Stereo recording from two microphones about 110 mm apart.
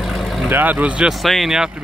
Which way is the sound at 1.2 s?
Centre (ahead or behind).